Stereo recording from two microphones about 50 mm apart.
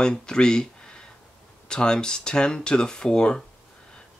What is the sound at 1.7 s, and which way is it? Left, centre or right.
Speech, centre.